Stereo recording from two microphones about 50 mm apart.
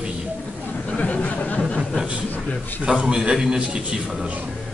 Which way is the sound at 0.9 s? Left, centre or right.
Left.